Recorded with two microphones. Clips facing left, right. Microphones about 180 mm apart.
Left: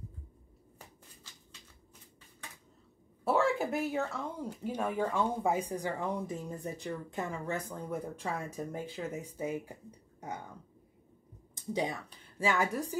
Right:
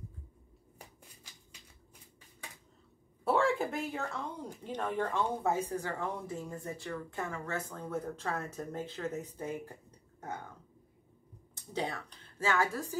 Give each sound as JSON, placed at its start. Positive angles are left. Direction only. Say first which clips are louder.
{"t": 3.3, "sound": "speech", "louder": "even", "side_deg": 5}
{"t": 11.5, "sound": "speech", "louder": "left 3 dB", "side_deg": 15}